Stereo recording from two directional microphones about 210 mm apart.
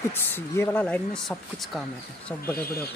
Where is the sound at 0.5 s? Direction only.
10° left (ahead or behind).